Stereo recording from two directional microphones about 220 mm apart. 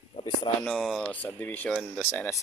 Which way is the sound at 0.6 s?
Centre (ahead or behind).